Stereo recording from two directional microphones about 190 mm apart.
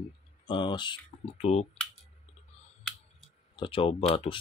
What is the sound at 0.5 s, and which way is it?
Speech, 25° left (ahead or behind).